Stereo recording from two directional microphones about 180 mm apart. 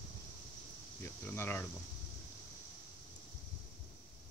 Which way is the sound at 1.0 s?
15° left (ahead or behind).